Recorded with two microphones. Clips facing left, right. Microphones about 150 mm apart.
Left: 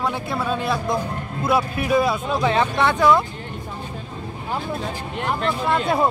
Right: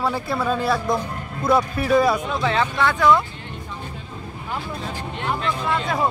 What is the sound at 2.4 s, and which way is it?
Speech, 20° left (ahead or behind).